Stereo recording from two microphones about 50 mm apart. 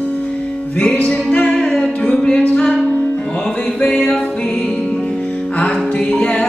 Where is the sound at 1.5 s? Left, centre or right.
Centre.